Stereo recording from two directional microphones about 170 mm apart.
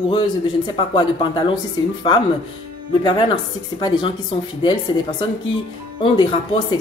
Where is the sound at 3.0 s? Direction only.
25° left (ahead or behind).